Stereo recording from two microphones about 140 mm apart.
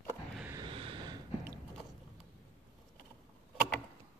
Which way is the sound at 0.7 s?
40° right (ahead or behind).